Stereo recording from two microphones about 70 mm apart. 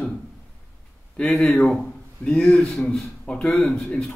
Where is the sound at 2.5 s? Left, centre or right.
Centre.